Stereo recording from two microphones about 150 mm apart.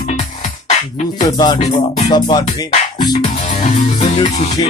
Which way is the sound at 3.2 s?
55° left (ahead or behind).